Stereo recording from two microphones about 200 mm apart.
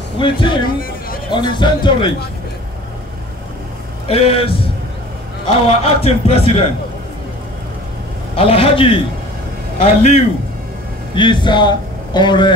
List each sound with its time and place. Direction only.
0.2 s a man's voice: 25° left (ahead or behind)
0.7 s chatter: 45° left (ahead or behind)
1.3 s a man's voice: 25° left (ahead or behind)
4.1 s a man's voice: 30° left (ahead or behind)
8.4 s a man's voice: 30° left (ahead or behind)
11.1 s a man's voice: 25° left (ahead or behind)